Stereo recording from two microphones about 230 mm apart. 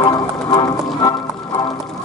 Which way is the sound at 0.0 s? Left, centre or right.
Centre.